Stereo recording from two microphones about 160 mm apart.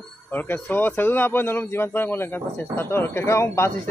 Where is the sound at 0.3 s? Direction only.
10° left (ahead or behind).